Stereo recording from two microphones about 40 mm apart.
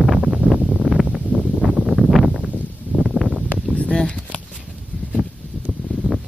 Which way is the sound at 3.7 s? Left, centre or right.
Left.